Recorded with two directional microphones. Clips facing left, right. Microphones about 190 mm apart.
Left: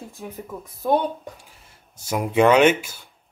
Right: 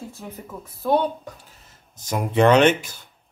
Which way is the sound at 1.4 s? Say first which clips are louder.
Even; 10° left (ahead or behind).